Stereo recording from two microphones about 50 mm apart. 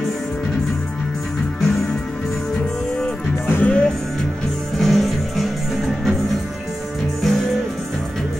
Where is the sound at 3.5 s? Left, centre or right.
Left.